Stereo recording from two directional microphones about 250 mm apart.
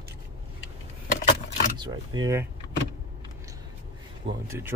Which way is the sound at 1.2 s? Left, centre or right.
Left.